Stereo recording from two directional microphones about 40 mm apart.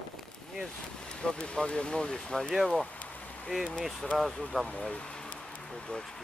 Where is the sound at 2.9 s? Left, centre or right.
Left.